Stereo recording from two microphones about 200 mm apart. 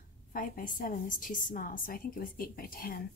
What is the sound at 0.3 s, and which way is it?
A woman's voice, 45° left (ahead or behind).